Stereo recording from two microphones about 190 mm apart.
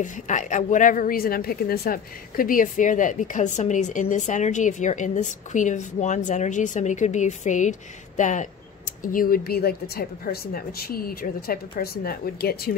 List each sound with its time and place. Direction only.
0.0 s a woman's voice: 40° left (ahead or behind)